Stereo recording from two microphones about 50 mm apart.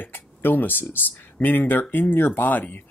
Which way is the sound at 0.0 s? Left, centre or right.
Left.